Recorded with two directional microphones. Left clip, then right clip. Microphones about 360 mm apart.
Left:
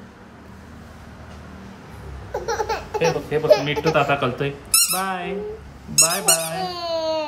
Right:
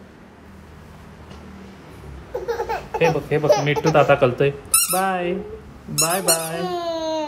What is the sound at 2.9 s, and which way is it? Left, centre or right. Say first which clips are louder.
A child's voice: right 4 dB; centre.